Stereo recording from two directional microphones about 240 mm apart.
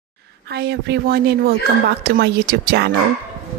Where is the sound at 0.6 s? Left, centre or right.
Right.